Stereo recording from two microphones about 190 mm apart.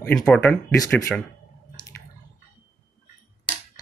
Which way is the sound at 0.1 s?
5° left (ahead or behind).